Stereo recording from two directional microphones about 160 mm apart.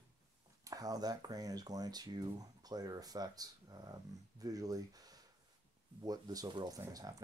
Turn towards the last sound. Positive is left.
turn(degrees=-20)  # may be behind; listen again after turning